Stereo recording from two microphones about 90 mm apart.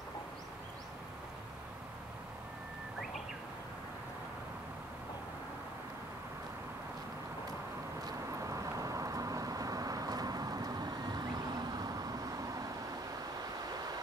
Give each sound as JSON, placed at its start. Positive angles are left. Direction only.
{"t": 8.0, "sound": "vehicle", "side_deg": -40}
{"t": 13.7, "sound": "vehicle", "side_deg": -45}